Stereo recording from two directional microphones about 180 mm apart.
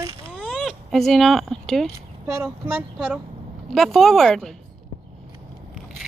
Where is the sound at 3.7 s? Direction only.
Centre (ahead or behind).